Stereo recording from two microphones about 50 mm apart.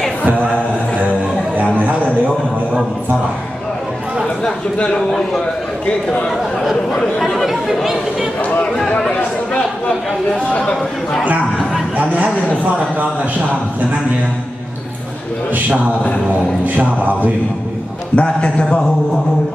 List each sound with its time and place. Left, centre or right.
4.7 s a man's voice: left
6.3 s speech: centre
8.4 s a man's voice: left
9.0 s a sound: centre
10.6 s speech: centre
16.6 s music: right
18.1 s a man's voice: left